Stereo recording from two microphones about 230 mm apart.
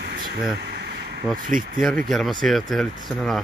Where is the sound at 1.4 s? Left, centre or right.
Right.